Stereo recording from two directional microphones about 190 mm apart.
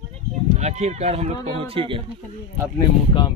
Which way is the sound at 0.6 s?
35° right (ahead or behind).